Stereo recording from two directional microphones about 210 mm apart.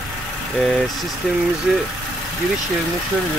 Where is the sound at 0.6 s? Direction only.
Centre (ahead or behind).